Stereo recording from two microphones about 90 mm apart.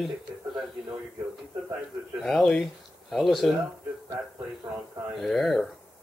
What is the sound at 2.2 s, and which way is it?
Speech, 5° left (ahead or behind).